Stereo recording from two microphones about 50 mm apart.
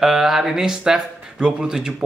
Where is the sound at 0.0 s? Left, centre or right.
Centre.